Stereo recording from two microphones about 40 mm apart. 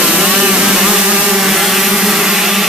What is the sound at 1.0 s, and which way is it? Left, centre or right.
Vehicle, centre.